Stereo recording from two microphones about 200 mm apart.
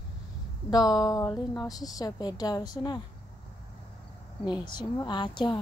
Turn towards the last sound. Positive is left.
turn(degrees=20)  # may be behind; listen again after turning